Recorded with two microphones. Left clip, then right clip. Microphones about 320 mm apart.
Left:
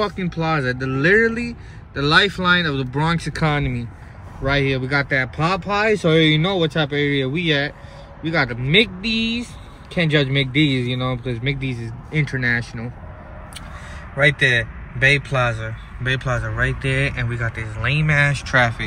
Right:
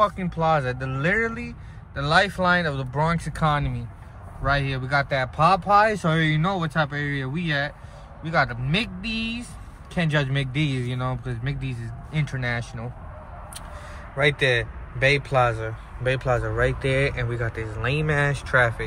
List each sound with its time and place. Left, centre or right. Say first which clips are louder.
0.0 s a man's voice: right 1 dB; centre
5.5 s speech: right 1 dB; right
5.9 s a man's voice: left 8 dB; centre
14.1 s a man's voice: left 5 dB; centre